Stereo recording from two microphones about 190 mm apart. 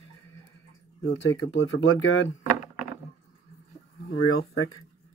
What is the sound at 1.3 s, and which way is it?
Speech, 85° left.